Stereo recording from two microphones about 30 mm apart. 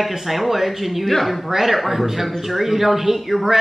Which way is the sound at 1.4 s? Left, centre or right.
Centre.